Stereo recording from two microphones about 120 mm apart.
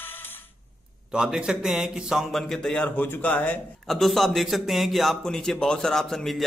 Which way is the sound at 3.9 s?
Centre (ahead or behind).